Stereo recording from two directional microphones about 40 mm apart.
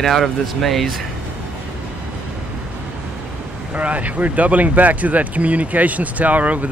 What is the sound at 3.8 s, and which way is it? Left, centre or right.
Speech, right.